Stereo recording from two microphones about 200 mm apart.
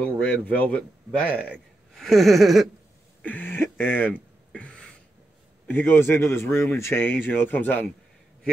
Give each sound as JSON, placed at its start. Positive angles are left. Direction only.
{"t": 0.0, "sound": "speech", "side_deg": 5}
{"t": 2.0, "sound": "a sound", "side_deg": 0}
{"t": 5.7, "sound": "speech", "side_deg": 10}